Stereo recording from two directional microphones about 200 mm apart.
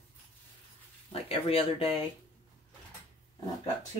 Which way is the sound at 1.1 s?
30° left (ahead or behind).